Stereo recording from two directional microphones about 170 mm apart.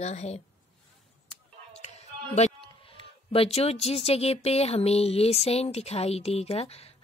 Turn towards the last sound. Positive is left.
turn(degrees=35)  # may be behind; listen again after turning